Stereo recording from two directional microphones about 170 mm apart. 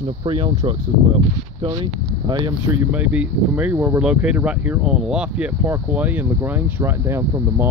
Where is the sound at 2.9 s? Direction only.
10° right (ahead or behind).